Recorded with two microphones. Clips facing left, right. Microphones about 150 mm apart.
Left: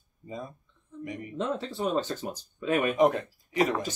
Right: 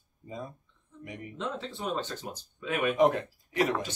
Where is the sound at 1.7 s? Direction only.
40° left (ahead or behind).